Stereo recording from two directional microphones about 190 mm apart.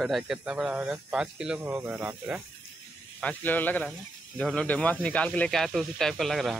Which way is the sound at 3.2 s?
10° left (ahead or behind).